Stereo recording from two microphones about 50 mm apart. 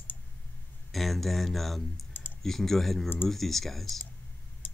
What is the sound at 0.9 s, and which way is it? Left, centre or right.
Speech, centre.